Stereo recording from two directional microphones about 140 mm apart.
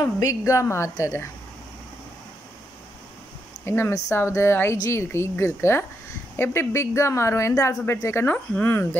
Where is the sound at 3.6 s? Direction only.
15° left (ahead or behind).